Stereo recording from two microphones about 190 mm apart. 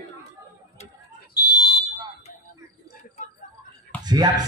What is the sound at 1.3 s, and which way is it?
Fire alarm, 20° left (ahead or behind).